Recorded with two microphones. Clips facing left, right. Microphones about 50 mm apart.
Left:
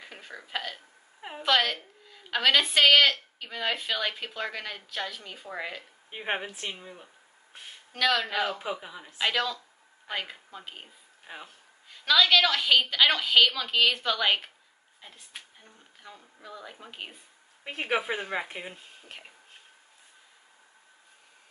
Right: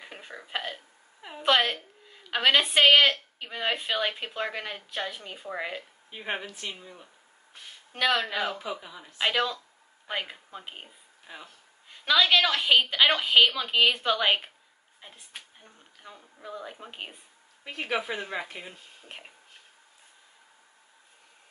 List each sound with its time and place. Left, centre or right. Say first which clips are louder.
0.0 s a sound: right 1 dB; centre
1.4 s a woman's voice: right 1 dB; right
6.0 s speech: left 3 dB; centre
7.9 s a woman's voice: even; centre
8.5 s speech: left 1 dB; centre
9.2 s a woman's voice: right 1 dB; centre
11.3 s speech: left 1 dB; centre
11.9 s a woman's voice: even; centre
17.6 s speech: left 2 dB; left
19.0 s a woman's voice: right 2 dB; centre